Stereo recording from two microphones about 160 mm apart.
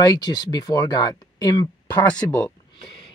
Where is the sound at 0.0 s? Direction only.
25° left (ahead or behind).